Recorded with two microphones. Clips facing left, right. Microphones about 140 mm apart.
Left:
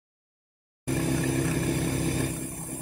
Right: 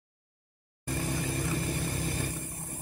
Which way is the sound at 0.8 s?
60° left (ahead or behind).